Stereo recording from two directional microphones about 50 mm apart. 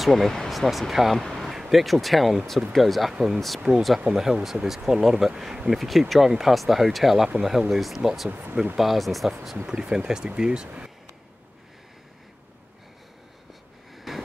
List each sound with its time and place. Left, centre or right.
0.0 s speech: centre
8.3 s speech: right
8.7 s speech: centre
9.7 s speech: centre
13.9 s snort: centre